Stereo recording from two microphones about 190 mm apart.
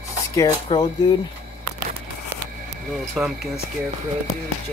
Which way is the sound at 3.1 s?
5° right (ahead or behind).